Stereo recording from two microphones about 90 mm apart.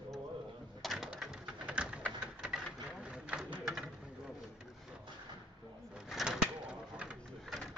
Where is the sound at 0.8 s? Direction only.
5° right (ahead or behind).